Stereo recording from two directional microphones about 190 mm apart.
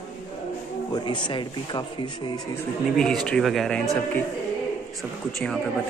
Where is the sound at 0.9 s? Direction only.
25° left (ahead or behind).